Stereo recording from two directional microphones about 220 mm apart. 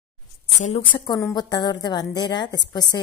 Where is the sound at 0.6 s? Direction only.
30° left (ahead or behind).